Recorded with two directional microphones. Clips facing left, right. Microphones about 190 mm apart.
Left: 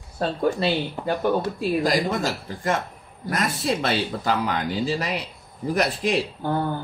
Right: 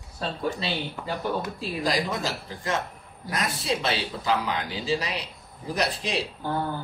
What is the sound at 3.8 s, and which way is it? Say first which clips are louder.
A man's voice: left 3 dB; 50° left (ahead or behind).